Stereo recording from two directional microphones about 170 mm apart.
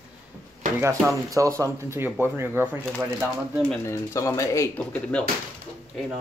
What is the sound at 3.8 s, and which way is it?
Speech, 15° left (ahead or behind).